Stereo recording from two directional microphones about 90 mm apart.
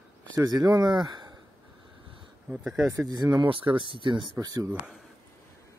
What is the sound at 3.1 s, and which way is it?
Speech, 45° right (ahead or behind).